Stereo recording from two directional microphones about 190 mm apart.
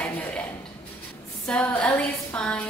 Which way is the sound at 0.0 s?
5° left (ahead or behind).